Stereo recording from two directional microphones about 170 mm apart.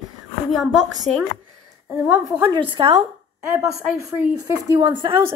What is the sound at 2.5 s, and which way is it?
Speech, 30° right (ahead or behind).